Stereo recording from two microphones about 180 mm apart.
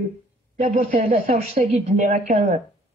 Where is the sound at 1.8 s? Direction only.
45° right (ahead or behind).